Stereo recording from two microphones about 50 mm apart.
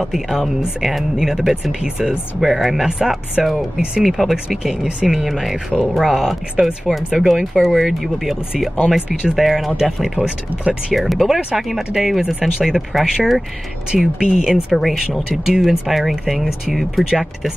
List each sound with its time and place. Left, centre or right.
0.0 s speech: centre
10.2 s speech: centre
10.9 s speech: centre